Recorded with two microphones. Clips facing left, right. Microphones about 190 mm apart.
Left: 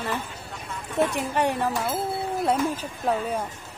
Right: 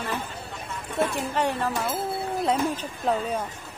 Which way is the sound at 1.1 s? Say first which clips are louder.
Left 1 dB; 15° left (ahead or behind).